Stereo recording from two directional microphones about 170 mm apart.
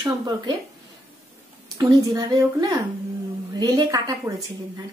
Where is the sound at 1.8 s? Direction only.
20° right (ahead or behind).